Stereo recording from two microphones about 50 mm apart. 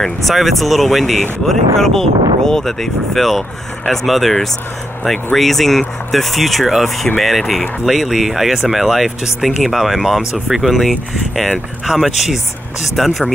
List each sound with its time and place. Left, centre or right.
0.3 s speech: centre